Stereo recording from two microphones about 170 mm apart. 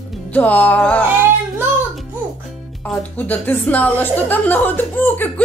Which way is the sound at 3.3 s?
10° left (ahead or behind).